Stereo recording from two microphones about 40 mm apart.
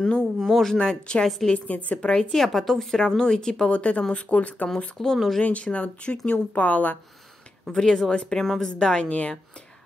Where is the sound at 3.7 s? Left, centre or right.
Left.